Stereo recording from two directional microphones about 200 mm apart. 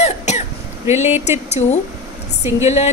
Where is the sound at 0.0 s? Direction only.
35° left (ahead or behind).